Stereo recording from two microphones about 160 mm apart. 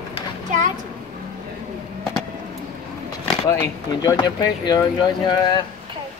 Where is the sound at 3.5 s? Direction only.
25° left (ahead or behind).